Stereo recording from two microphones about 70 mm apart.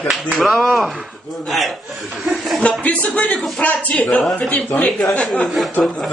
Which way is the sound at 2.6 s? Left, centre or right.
Centre.